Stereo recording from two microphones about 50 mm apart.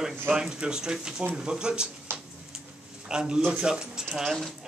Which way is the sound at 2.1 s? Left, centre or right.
Right.